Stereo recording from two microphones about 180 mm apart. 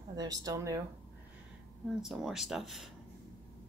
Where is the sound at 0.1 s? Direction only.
20° right (ahead or behind).